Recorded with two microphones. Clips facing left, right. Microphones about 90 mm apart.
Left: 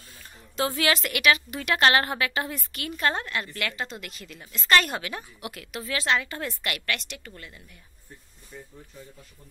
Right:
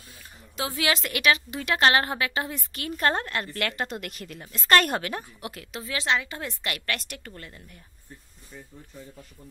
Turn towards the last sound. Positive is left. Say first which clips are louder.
# right 2 dB
turn(degrees=-40)  # may be behind; listen again after turning